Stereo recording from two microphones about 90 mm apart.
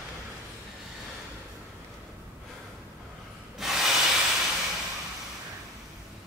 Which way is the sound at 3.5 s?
5° right (ahead or behind).